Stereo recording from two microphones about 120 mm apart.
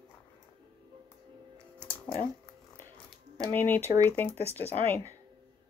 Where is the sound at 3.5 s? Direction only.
15° left (ahead or behind).